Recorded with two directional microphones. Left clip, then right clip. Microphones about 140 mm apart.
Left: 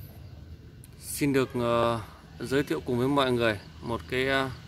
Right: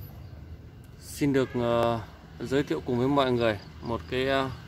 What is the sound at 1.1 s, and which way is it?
Speech, 5° left (ahead or behind).